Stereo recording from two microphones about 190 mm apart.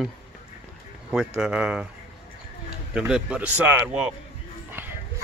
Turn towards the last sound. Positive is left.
turn(degrees=-10)  # may be behind; listen again after turning